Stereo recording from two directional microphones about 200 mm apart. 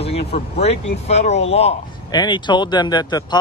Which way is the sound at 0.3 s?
30° left (ahead or behind).